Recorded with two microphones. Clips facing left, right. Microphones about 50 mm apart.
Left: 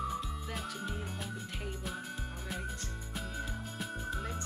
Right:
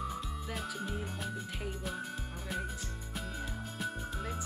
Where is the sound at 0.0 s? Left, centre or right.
Centre.